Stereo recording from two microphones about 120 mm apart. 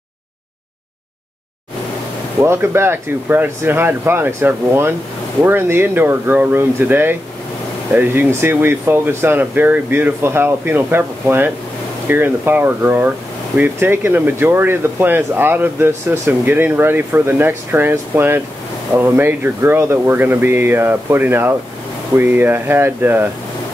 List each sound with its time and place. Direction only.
2.4 s speech: 20° right (ahead or behind)